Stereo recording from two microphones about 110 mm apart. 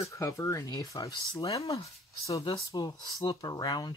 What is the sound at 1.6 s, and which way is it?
Speech, 65° left (ahead or behind).